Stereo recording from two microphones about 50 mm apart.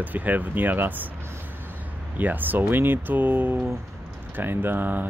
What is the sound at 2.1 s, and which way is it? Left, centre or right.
Speech, right.